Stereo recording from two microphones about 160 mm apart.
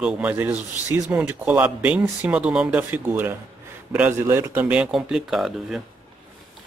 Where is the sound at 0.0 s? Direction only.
10° right (ahead or behind).